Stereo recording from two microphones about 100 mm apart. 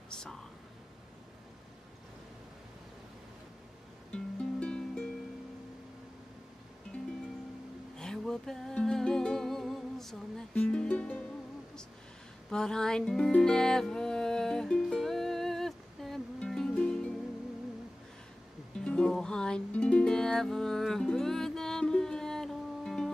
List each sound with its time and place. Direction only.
0.1 s a sound: 5° left (ahead or behind)
4.1 s music: 10° left (ahead or behind)
8.0 s music: 5° left (ahead or behind)
12.4 s music: 5° left (ahead or behind)
18.9 s music: 5° left (ahead or behind)